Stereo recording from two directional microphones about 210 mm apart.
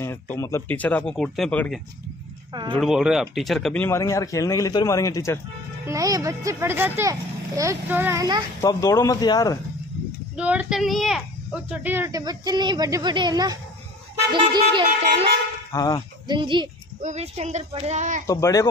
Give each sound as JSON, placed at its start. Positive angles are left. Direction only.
{"t": 0.0, "sound": "speech", "side_deg": 10}
{"t": 5.9, "sound": "speech", "side_deg": -15}
{"t": 8.5, "sound": "speech", "side_deg": 15}
{"t": 10.3, "sound": "speech", "side_deg": -5}
{"t": 15.7, "sound": "speech", "side_deg": 20}
{"t": 16.3, "sound": "speech", "side_deg": -20}
{"t": 18.2, "sound": "speech", "side_deg": 15}